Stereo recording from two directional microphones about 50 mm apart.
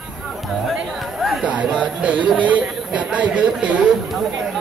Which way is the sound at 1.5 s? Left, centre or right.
Right.